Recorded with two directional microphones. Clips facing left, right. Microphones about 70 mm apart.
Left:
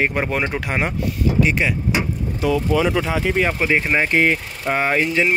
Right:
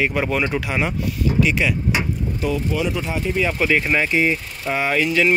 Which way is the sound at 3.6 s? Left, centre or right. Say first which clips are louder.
Even; left.